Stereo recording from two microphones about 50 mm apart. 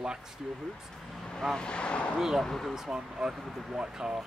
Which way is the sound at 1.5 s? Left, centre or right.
Centre.